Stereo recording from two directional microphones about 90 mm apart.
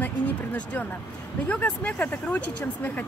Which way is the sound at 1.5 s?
15° left (ahead or behind).